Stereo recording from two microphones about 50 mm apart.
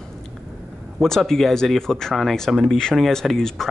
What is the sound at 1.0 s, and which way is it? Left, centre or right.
Speech, centre.